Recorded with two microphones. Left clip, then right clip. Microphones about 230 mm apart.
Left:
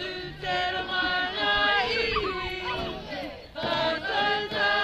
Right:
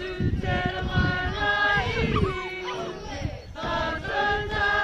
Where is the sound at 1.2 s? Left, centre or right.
Left.